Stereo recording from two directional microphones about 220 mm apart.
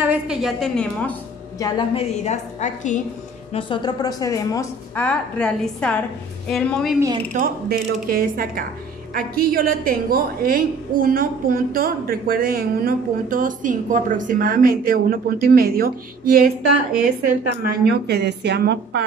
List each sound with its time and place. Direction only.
0.0 s a woman's voice: 5° right (ahead or behind)
1.6 s a woman's voice: 25° left (ahead or behind)
3.5 s a woman's voice: 20° left (ahead or behind); by 7.0 s centre (ahead or behind)
7.3 s a woman's voice: 45° right (ahead or behind)
17.8 s a woman's voice: 50° right (ahead or behind)